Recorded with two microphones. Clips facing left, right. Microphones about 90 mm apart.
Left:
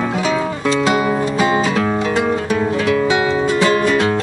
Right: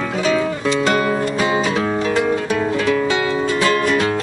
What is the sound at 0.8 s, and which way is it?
Music, 15° left (ahead or behind).